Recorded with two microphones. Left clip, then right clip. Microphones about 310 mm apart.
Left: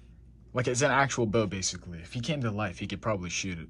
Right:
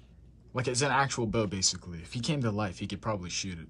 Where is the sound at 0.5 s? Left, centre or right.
Centre.